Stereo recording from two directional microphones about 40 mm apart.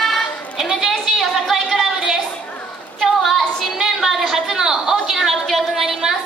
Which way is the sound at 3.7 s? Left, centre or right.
Centre.